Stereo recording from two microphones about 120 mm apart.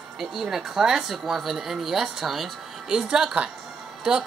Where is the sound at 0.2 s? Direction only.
5° right (ahead or behind).